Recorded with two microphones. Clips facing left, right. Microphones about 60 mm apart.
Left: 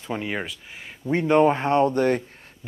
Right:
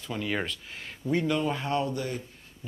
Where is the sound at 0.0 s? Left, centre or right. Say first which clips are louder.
Left 3 dB; left.